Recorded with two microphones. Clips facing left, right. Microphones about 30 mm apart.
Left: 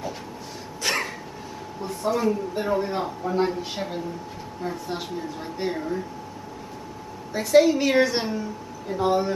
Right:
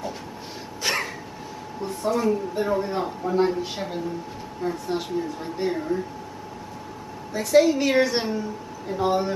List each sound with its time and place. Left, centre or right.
0.8 s a sound: centre
1.8 s speech: centre
7.3 s speech: centre